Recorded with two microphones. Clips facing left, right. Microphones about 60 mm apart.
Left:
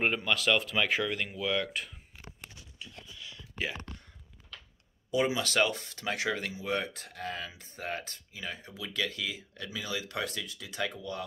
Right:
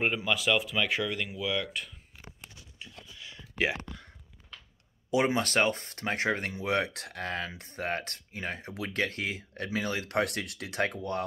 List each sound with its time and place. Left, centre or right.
0.0 s speech: centre
2.8 s a sound: right
3.5 s speech: right
5.1 s speech: right
6.5 s speech: right
10.8 s speech: right